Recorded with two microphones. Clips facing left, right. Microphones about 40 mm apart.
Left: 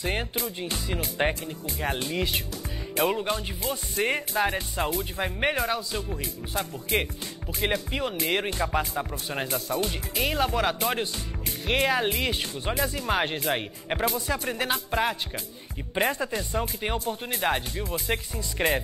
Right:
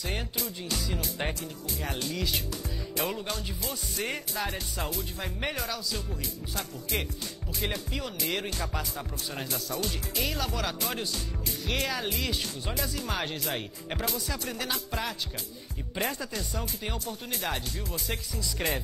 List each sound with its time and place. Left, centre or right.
0.0 s speech: left